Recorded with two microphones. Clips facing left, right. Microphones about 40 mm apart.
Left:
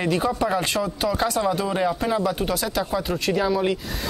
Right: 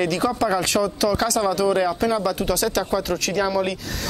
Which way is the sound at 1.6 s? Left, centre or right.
Right.